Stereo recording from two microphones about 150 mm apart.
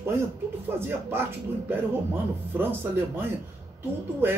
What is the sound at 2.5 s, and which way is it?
Speech, 15° right (ahead or behind).